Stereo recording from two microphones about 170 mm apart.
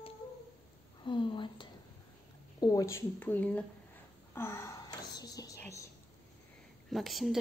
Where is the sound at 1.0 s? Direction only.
30° left (ahead or behind); by 3.6 s 10° left (ahead or behind).